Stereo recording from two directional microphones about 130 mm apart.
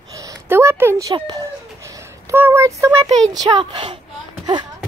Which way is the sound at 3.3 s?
30° right (ahead or behind).